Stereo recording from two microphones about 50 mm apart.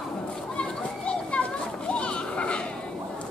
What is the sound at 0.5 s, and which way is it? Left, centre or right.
Children playing, left.